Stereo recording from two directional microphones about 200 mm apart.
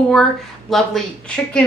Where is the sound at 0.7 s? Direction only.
Centre (ahead or behind).